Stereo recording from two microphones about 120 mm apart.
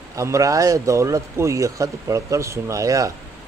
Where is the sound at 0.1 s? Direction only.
25° right (ahead or behind).